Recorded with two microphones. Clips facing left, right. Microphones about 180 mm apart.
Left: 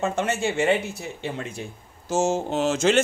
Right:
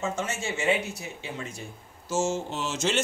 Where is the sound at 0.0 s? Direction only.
60° left (ahead or behind).